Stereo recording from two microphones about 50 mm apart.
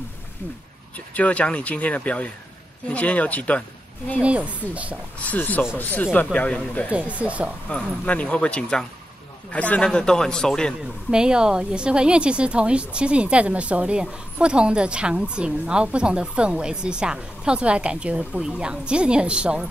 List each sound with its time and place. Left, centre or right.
0.9 s speech: left
4.2 s speech: right
5.3 s speech: left
6.1 s speech: left
6.9 s speech: right
7.7 s speech: left
9.8 s a man's voice: centre
11.1 s speech: centre